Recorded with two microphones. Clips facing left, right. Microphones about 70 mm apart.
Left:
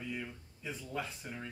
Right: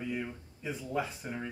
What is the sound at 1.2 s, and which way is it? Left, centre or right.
Speech, centre.